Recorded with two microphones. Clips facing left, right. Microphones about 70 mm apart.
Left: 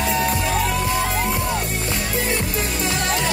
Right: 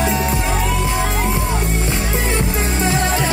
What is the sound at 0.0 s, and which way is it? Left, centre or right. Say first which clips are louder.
Music: right 2 dB; right.